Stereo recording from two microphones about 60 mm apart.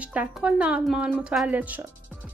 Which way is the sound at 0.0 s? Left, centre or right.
Right.